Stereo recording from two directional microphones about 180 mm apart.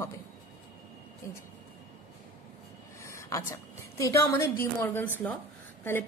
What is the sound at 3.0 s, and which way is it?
A woman's voice, 15° left (ahead or behind).